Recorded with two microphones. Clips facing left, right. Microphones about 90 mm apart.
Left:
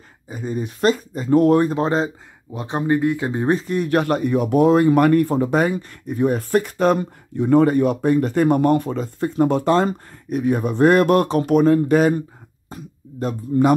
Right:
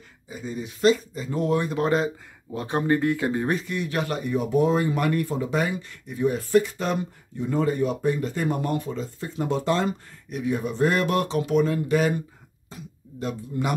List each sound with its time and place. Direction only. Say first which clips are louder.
0.3 s speech: left 7 dB; 45° left (ahead or behind)
1.7 s speech: left 3 dB; 30° left (ahead or behind)
2.5 s speech: left 3 dB; 20° left (ahead or behind); by 12.2 s 45° left (ahead or behind)
12.6 s a sound: left 5 dB; 40° left (ahead or behind)